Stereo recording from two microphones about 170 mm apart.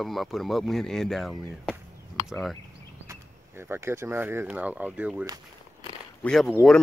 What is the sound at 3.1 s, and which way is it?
Speech, 15° right (ahead or behind).